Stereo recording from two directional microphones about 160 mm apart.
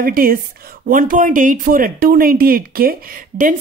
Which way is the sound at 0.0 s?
65° right (ahead or behind).